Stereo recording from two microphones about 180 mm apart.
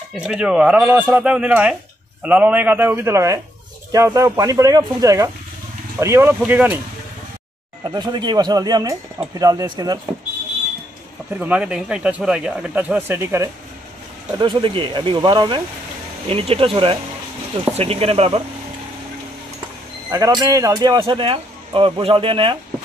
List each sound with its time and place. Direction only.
0.3 s speech: 5° right (ahead or behind)
7.8 s speech: 25° right (ahead or behind)
11.3 s speech: 5° right (ahead or behind)
14.4 s speech: 30° right (ahead or behind)
20.1 s speech: 20° right (ahead or behind)